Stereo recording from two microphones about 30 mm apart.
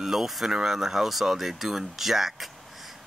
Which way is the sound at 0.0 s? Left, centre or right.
Centre.